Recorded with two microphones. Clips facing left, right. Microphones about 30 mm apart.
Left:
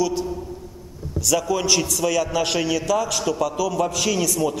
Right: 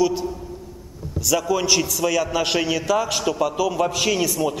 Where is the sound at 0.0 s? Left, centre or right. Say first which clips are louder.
Right 2 dB; centre.